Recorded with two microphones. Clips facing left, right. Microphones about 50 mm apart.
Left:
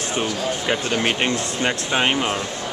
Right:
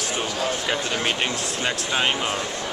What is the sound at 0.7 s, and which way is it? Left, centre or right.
Speech, centre.